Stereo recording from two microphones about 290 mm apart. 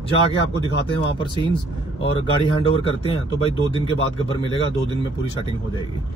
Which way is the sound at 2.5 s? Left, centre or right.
Centre.